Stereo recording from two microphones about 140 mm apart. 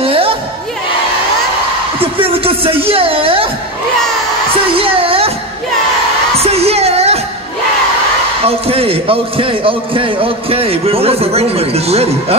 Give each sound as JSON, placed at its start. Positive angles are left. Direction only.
{"t": 0.0, "sound": "music", "side_deg": -40}
{"t": 2.0, "sound": "speech", "side_deg": -40}
{"t": 4.7, "sound": "speech", "side_deg": -40}
{"t": 6.3, "sound": "music", "side_deg": -45}
{"t": 8.5, "sound": "a man's voice", "side_deg": -45}